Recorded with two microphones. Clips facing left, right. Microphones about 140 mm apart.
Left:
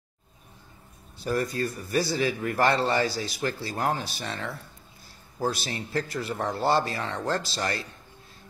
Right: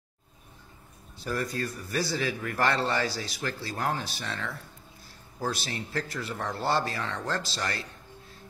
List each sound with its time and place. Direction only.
1.2 s speech: 20° left (ahead or behind)